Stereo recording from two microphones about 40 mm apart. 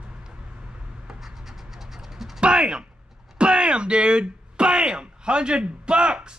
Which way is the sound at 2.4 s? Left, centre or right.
Right.